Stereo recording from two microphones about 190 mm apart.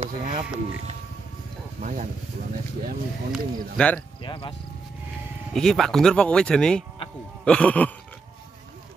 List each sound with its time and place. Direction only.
0.0 s speech: 45° right (ahead or behind)
1.8 s speech: 40° right (ahead or behind)
3.3 s speech: 5° left (ahead or behind)
4.2 s speech: 25° left (ahead or behind)
5.5 s speech: centre (ahead or behind)
7.4 s a sound: 5° left (ahead or behind)